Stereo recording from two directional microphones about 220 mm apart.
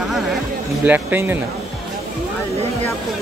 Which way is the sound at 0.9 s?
10° right (ahead or behind).